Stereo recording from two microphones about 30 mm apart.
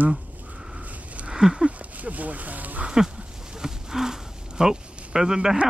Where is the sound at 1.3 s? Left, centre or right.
Right.